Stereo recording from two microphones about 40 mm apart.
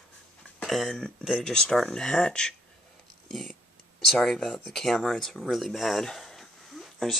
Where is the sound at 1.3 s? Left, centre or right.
Centre.